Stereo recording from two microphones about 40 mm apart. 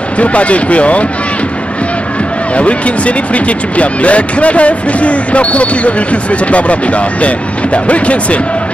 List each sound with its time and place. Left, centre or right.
0.2 s speech: left
2.5 s speech: left